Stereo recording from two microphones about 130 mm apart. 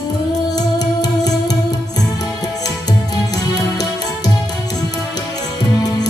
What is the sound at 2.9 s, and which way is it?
Music, 30° left (ahead or behind).